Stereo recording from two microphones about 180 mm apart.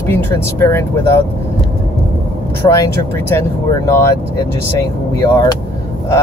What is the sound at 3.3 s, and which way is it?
Speech, 15° left (ahead or behind).